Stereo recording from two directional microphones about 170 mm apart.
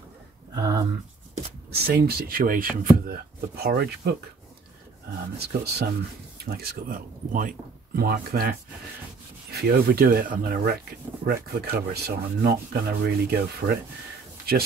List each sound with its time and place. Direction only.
0.6 s a sound: 20° right (ahead or behind)
1.7 s speech: 65° right (ahead or behind)
5.4 s speech: 70° right (ahead or behind)